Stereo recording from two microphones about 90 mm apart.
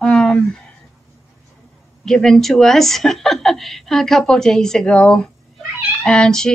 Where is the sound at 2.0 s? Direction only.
5° left (ahead or behind).